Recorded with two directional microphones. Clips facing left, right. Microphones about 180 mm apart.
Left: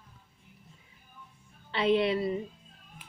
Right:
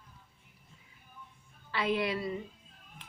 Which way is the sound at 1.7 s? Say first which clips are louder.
Left 6 dB; 25° left (ahead or behind).